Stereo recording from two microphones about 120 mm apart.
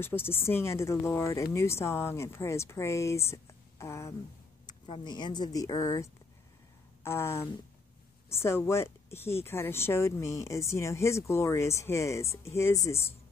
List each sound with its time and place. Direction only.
0.0 s speech: 20° left (ahead or behind)
4.6 s speech: 40° left (ahead or behind); by 13.1 s 25° left (ahead or behind)